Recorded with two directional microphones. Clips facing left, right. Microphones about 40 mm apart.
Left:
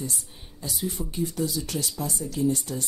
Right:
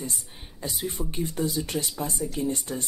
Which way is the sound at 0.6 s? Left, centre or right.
Right.